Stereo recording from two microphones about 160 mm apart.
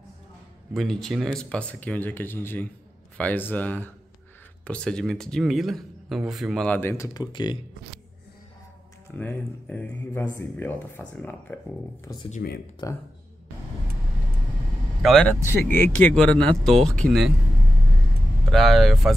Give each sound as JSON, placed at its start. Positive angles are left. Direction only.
{"t": 0.7, "sound": "speech", "side_deg": 0}
{"t": 7.2, "sound": "speech", "side_deg": 30}
{"t": 9.1, "sound": "speech", "side_deg": 10}
{"t": 12.0, "sound": "speech", "side_deg": 20}
{"t": 15.0, "sound": "speech", "side_deg": 0}
{"t": 15.2, "sound": "speech", "side_deg": 15}
{"t": 18.5, "sound": "speech", "side_deg": 0}